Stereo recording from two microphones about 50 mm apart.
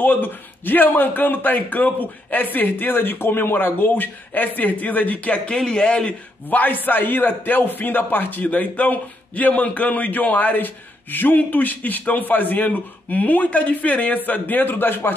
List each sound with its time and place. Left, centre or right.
0.0 s a man's voice: left
5.6 s speech: centre
6.5 s a man's voice: left